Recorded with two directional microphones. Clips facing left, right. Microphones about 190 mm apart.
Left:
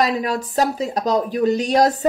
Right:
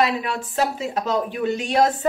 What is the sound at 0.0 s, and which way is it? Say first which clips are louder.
Speech: left 2 dB; 40° left (ahead or behind).